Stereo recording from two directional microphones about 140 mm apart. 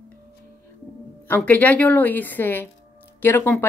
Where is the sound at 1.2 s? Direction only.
10° left (ahead or behind).